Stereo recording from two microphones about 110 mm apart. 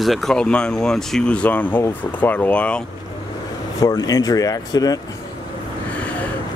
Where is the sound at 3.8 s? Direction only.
35° left (ahead or behind).